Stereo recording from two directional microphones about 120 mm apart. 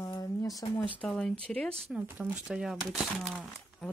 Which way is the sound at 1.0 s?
5° left (ahead or behind).